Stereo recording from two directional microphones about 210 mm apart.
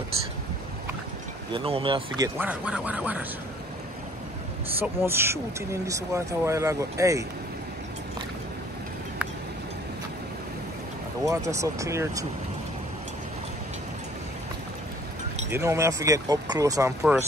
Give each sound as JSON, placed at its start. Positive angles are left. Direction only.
{"t": 1.5, "sound": "speech", "side_deg": -25}
{"t": 4.7, "sound": "speech", "side_deg": -10}
{"t": 11.2, "sound": "speech", "side_deg": -15}
{"t": 15.5, "sound": "speech", "side_deg": -15}